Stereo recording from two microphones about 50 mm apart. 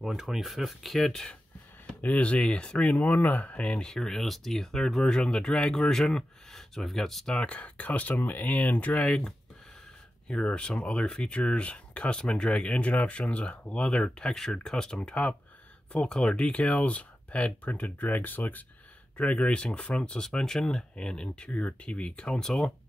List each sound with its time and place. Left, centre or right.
0.0 s speech: centre
2.0 s speech: left
3.1 s speech: left
3.9 s speech: centre
7.3 s speech: left
10.2 s speech: centre
15.0 s speech: left
19.1 s speech: left
21.5 s speech: left; by 22.7 s centre